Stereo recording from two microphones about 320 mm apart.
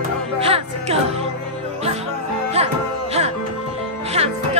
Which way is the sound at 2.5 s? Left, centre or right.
Centre.